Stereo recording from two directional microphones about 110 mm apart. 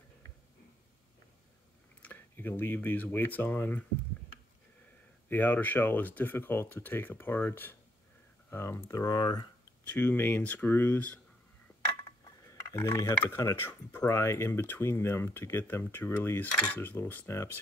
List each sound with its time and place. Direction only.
2.0 s speech: 15° left (ahead or behind)
5.3 s speech: 15° left (ahead or behind); by 9.5 s 40° left (ahead or behind)
9.8 s speech: 15° left (ahead or behind)
12.0 s dishes: 30° left (ahead or behind)
13.7 s speech: 20° left (ahead or behind)